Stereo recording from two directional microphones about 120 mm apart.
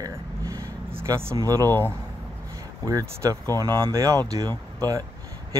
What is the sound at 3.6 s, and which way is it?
Speech, 30° right (ahead or behind).